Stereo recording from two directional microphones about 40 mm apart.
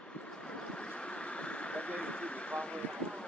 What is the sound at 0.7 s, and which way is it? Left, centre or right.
Vehicle, left.